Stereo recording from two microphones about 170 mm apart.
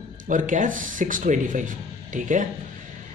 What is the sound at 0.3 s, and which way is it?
Speech, 50° right (ahead or behind).